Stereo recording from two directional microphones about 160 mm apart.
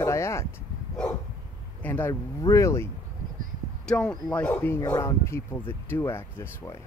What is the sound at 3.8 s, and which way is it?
Speech, 5° left (ahead or behind).